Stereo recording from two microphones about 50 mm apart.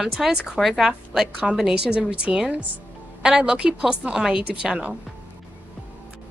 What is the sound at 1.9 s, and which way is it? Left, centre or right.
A woman's voice, right.